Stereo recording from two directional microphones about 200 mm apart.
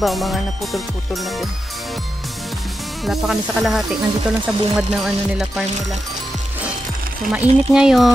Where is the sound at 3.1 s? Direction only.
Centre (ahead or behind).